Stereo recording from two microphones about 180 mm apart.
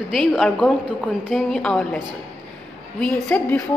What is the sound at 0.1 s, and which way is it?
A woman's voice, centre (ahead or behind).